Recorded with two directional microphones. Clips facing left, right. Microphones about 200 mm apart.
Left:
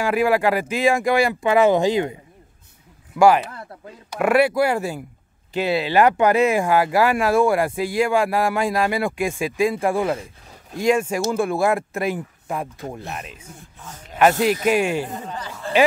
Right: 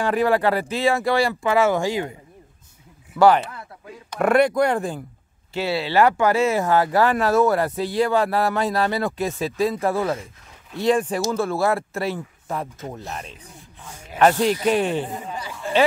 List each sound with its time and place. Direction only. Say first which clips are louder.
0.0 s speech: left 1 dB; 10° left (ahead or behind)
3.1 s speech: left 1 dB; 15° left (ahead or behind)
14.4 s speech: left 1 dB; 5° left (ahead or behind)
15.1 s a man's voice: even; 10° right (ahead or behind)